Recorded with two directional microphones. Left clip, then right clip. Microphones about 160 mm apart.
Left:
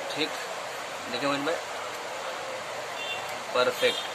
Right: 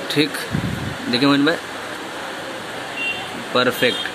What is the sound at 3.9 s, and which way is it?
Speech, 20° right (ahead or behind).